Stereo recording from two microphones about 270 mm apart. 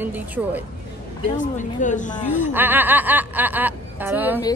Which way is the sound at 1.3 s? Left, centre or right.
Left.